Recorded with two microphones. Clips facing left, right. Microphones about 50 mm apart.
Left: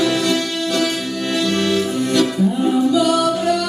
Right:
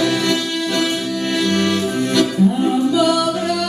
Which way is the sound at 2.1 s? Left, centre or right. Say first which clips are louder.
Right 1 dB; centre.